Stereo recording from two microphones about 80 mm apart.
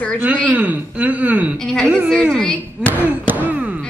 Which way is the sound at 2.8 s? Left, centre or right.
Centre.